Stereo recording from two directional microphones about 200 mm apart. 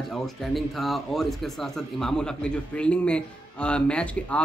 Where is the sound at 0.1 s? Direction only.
Centre (ahead or behind).